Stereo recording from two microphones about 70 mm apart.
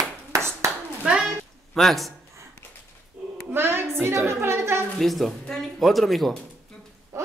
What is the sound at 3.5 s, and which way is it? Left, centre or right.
A woman's voice, right.